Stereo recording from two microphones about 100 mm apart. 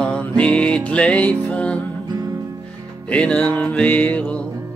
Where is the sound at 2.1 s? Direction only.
45° right (ahead or behind).